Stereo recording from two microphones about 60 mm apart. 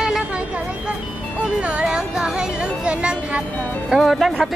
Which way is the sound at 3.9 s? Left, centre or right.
Centre.